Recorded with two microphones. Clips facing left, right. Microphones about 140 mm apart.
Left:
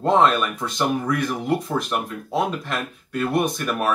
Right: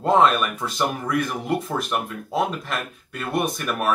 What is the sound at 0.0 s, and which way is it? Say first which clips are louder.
Speech: even; centre (ahead or behind).